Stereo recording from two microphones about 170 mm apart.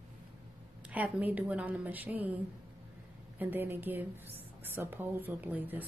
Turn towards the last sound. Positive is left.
turn(degrees=-10)  # may be behind; listen again after turning